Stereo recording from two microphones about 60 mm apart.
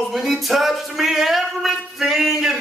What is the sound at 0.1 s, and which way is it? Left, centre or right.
Music, centre.